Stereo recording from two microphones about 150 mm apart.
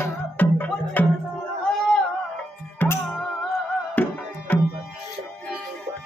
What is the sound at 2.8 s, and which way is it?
Music, 10° left (ahead or behind).